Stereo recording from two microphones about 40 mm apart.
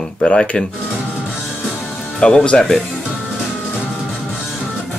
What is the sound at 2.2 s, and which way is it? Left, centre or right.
Speech, left.